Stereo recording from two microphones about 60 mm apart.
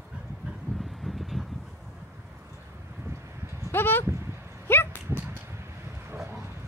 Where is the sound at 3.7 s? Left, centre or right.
Left.